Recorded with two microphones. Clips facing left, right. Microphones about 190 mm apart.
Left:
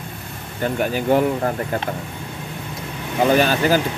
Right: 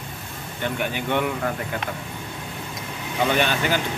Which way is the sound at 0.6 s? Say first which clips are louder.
Left 6 dB; 40° left (ahead or behind).